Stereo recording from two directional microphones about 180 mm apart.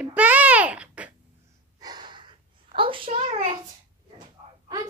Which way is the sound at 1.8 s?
25° right (ahead or behind).